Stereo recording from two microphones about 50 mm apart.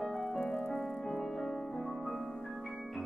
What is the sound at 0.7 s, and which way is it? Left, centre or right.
Music, centre.